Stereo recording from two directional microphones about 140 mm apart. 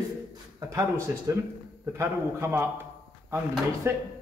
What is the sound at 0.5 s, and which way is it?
Speech, 25° right (ahead or behind).